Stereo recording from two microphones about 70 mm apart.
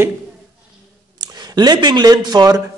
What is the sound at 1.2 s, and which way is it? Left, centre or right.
Speech, right.